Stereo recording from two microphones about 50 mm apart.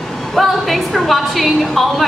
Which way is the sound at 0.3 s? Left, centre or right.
Centre.